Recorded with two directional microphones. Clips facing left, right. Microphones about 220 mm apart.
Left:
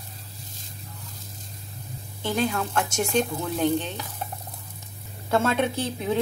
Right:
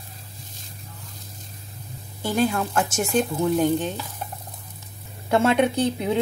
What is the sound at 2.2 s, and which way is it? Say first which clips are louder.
A woman's voice: right 3 dB; 10° right (ahead or behind).